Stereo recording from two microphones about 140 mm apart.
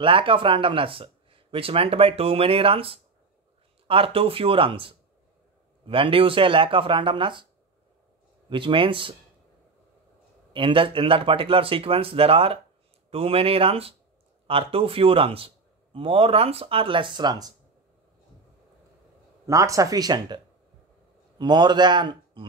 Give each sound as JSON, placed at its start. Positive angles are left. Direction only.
{"t": 0.0, "sound": "a man's voice", "side_deg": -40}
{"t": 8.5, "sound": "a man's voice", "side_deg": -35}
{"t": 10.5, "sound": "a man's voice", "side_deg": -40}
{"t": 19.4, "sound": "speech", "side_deg": -20}
{"t": 21.4, "sound": "a man's voice", "side_deg": -30}